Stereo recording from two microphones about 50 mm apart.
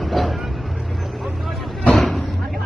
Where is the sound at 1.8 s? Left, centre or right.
Left.